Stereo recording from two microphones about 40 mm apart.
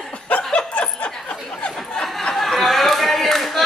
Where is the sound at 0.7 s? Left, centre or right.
Left.